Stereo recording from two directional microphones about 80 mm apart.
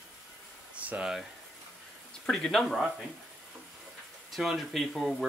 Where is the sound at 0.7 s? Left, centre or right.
Centre.